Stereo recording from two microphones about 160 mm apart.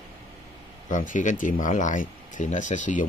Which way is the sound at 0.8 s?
55° left (ahead or behind).